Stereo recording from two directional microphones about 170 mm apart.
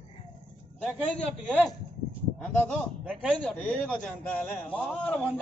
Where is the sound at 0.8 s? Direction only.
5° left (ahead or behind).